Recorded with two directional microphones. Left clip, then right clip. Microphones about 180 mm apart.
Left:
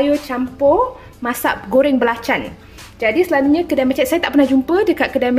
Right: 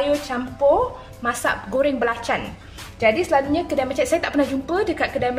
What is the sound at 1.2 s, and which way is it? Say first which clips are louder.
A woman's voice: left 3 dB; 50° left (ahead or behind).